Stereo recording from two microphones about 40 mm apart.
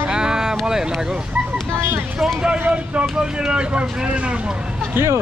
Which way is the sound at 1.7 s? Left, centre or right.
Right.